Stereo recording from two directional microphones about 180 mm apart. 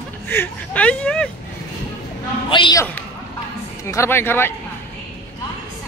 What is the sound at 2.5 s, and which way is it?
Speech, 25° left (ahead or behind).